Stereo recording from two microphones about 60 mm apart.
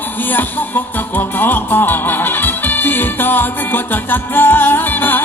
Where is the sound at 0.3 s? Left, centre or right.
Left.